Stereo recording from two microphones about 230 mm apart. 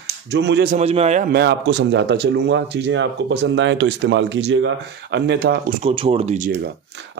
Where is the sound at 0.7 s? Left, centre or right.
Right.